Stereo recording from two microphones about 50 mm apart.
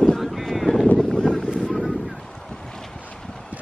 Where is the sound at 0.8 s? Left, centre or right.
Centre.